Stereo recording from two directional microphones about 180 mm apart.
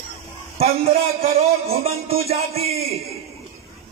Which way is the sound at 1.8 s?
35° right (ahead or behind).